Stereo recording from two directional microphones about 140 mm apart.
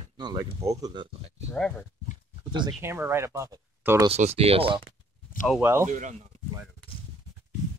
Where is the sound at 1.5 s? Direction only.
5° left (ahead or behind).